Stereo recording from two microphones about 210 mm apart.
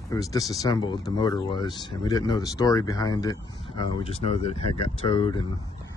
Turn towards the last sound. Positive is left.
turn(degrees=25)  # may be behind; listen again after turning